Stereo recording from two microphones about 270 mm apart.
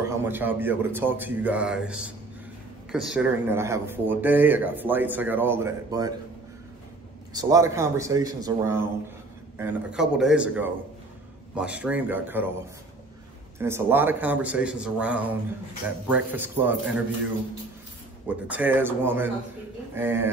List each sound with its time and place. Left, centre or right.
0.2 s speech: centre
7.3 s speech: centre
13.6 s speech: centre
18.2 s speech: centre